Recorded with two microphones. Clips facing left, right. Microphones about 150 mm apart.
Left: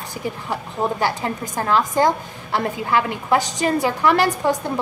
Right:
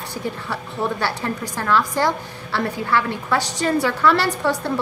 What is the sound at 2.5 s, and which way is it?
A woman's voice, 20° left (ahead or behind).